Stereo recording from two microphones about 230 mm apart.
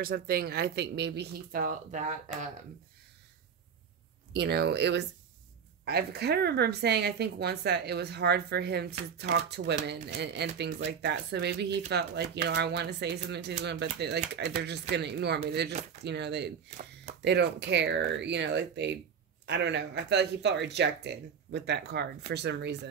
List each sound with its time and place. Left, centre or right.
0.0 s speech: right
4.3 s speech: right